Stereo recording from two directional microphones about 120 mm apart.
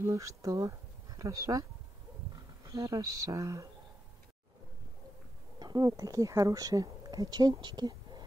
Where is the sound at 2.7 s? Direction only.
25° right (ahead or behind).